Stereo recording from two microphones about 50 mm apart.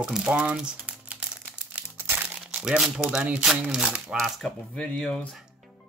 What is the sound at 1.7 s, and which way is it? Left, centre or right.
Crumpling, right.